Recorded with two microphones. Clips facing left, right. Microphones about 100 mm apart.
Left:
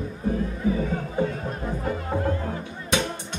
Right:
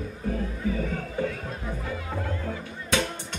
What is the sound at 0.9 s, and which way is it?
Music, 25° left (ahead or behind).